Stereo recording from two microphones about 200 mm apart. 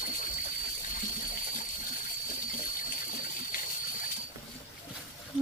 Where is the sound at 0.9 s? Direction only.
45° left (ahead or behind).